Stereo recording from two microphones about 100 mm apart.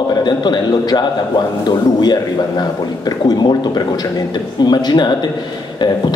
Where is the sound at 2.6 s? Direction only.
40° left (ahead or behind).